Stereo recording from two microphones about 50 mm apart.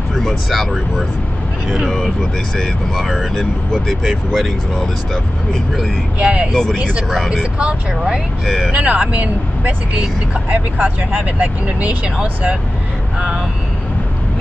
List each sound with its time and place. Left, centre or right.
0.1 s speech: centre
4.0 s speech: centre
4.7 s speech: centre
6.1 s speech: right
6.5 s speech: centre
7.5 s speech: centre
8.5 s speech: centre
8.7 s speech: right